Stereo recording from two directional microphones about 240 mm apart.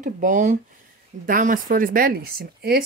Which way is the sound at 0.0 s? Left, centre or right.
Right.